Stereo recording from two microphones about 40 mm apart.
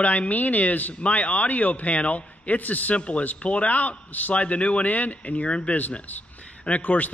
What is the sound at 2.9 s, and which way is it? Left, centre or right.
Speech, left.